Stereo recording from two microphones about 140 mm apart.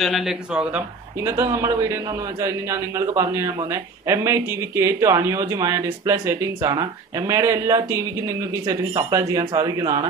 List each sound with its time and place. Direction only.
0.0 s speech: centre (ahead or behind)
1.2 s speech: 20° right (ahead or behind)